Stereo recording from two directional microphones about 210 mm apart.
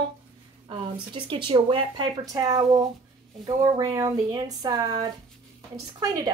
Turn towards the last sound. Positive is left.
turn(degrees=-15)  # may be behind; listen again after turning